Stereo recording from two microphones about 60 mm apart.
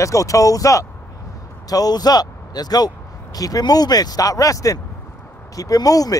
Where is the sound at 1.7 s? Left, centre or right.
Left.